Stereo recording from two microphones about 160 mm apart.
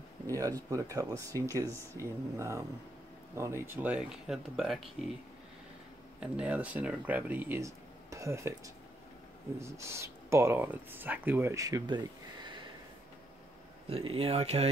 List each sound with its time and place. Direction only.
0.3 s speech: 20° right (ahead or behind); by 4.8 s centre (ahead or behind)
6.1 s speech: 5° right (ahead or behind); by 12.5 s 30° right (ahead or behind)
13.8 s speech: 35° right (ahead or behind)